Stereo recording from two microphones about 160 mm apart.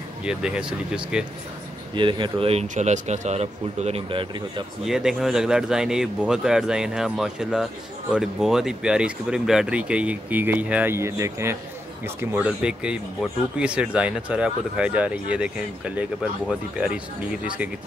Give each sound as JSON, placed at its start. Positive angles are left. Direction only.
{"t": 0.2, "sound": "speech", "side_deg": -5}
{"t": 2.0, "sound": "speech", "side_deg": -30}
{"t": 2.7, "sound": "speech", "side_deg": -45}
{"t": 4.8, "sound": "speech", "side_deg": -5}